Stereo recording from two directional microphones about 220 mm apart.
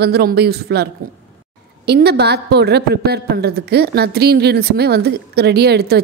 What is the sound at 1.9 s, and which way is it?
A woman's voice, 50° right (ahead or behind).